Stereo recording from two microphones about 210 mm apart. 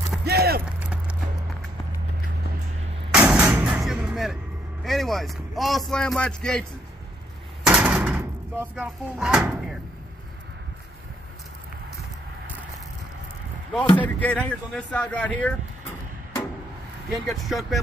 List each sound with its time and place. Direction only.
0.2 s a sound: 50° right (ahead or behind)
0.7 s a sound: 5° right (ahead or behind)
3.1 s artillery fire: 5° right (ahead or behind)
4.8 s a man's voice: centre (ahead or behind)
7.6 s door: 5° right (ahead or behind)
13.9 s speech: 5° left (ahead or behind)
17.1 s speech: centre (ahead or behind)